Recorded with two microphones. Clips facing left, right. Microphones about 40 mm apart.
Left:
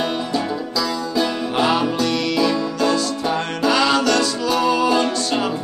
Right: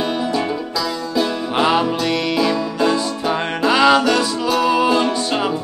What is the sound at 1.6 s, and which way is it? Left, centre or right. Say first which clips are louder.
Music: right 2 dB; centre.